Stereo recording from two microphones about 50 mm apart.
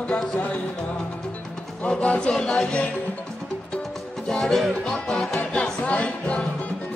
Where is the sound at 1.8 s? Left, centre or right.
Left.